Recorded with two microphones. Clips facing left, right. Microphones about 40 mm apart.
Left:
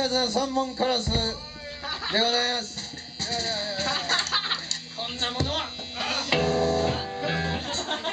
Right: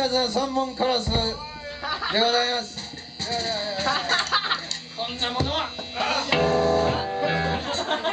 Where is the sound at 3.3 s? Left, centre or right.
Centre.